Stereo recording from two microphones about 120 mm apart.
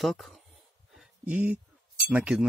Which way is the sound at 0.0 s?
Centre (ahead or behind).